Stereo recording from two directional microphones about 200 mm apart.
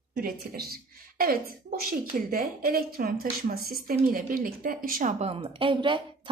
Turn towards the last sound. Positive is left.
turn(degrees=-25)  # may be behind; listen again after turning